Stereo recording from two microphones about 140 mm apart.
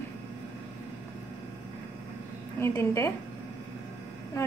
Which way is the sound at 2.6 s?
20° left (ahead or behind).